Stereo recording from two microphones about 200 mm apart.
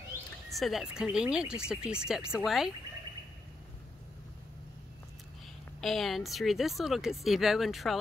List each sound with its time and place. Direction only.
0.5 s speech: centre (ahead or behind)
5.8 s speech: centre (ahead or behind)